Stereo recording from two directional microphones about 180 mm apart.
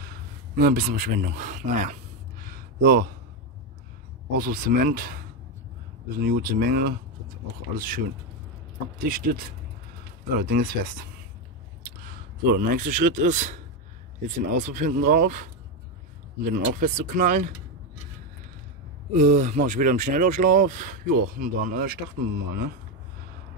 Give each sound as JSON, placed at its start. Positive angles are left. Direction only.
{"t": 0.0, "sound": "a sound", "side_deg": -55}
{"t": 4.3, "sound": "speech", "side_deg": -50}
{"t": 6.2, "sound": "speech", "side_deg": -55}
{"t": 10.4, "sound": "speech", "side_deg": -55}
{"t": 12.5, "sound": "speech", "side_deg": -50}
{"t": 16.4, "sound": "speech", "side_deg": -50}
{"t": 19.1, "sound": "speech", "side_deg": -45}